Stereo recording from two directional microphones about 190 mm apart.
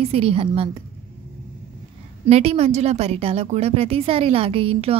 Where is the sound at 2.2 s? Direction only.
35° right (ahead or behind).